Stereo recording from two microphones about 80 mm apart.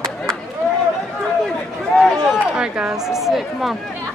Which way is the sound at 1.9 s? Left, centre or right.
Centre.